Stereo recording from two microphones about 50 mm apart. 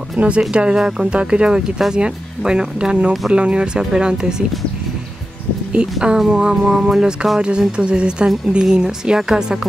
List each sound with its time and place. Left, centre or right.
0.2 s speech: right
0.5 s speech: centre
5.9 s speech: centre